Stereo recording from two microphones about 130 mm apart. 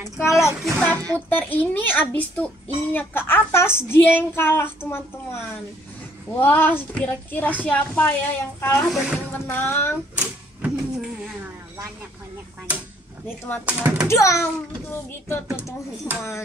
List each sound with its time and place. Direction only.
0.2 s a child's voice: 20° left (ahead or behind)
0.6 s child singing: 5° left (ahead or behind)
1.3 s speech: 15° left (ahead or behind)
6.4 s speech: 15° left (ahead or behind)
8.9 s speech: 10° right (ahead or behind)
9.3 s speech: 15° left (ahead or behind)
10.1 s a sound: 10° right (ahead or behind)
13.7 s speech: 10° right (ahead or behind)
14.2 s a child's voice: 20° left (ahead or behind)